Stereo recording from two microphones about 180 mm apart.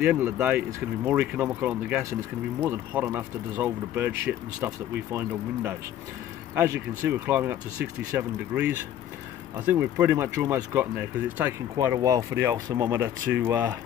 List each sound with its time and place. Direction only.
0.0 s speech: 10° right (ahead or behind)